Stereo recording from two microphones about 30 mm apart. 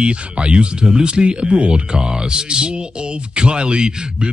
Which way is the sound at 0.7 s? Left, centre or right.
Right.